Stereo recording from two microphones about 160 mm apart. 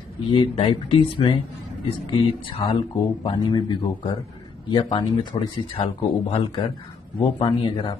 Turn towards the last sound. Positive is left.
turn(degrees=30)  # may be behind; listen again after turning